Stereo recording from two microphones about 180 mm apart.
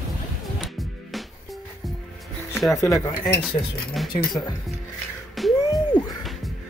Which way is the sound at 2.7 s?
15° left (ahead or behind).